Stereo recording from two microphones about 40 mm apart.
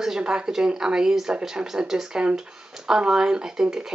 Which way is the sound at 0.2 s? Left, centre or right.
Right.